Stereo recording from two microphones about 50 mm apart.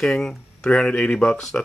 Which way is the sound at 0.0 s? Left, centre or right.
Centre.